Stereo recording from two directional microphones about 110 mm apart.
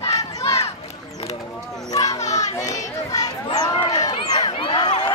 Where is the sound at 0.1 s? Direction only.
30° left (ahead or behind).